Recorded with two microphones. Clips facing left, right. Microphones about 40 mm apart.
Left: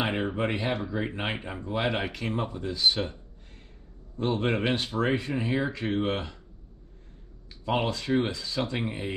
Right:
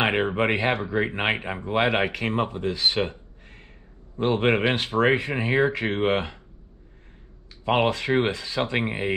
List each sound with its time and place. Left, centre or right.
0.0 s speech: right
7.6 s speech: right